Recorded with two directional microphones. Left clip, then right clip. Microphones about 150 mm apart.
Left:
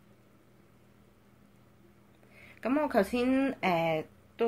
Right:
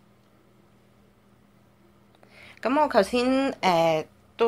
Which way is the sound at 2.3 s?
10° left (ahead or behind).